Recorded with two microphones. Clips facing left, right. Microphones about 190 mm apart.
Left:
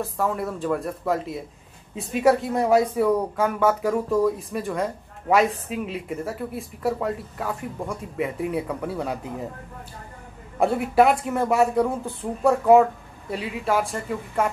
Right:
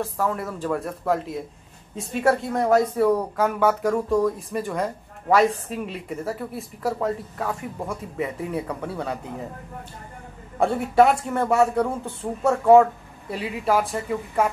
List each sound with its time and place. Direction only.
0.0 s speech: centre (ahead or behind)
10.6 s speech: centre (ahead or behind)